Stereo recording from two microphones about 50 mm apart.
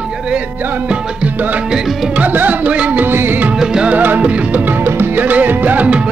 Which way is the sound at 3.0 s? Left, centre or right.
Right.